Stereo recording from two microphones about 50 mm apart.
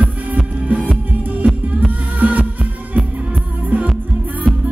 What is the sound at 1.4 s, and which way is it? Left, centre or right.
Music, right.